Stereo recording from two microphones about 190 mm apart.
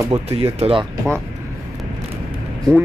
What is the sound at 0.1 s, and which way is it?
Speech, 30° right (ahead or behind).